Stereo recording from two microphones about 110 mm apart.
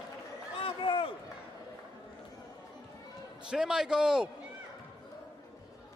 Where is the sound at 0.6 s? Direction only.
55° left (ahead or behind).